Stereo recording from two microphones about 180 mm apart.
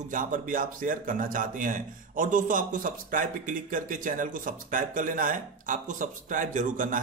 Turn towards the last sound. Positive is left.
turn(degrees=-45)  # may be behind; listen again after turning